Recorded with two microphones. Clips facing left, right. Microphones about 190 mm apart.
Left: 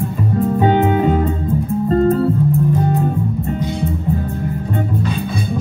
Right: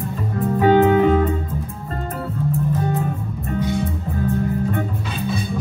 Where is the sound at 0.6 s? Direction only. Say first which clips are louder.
Right 3 dB; 20° left (ahead or behind).